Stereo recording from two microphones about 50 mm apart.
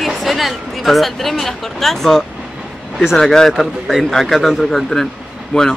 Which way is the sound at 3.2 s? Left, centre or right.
Centre.